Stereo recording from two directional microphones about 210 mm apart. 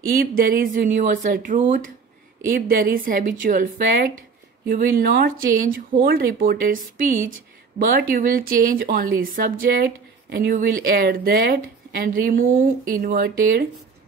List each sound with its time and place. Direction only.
0.1 s speech: 45° right (ahead or behind)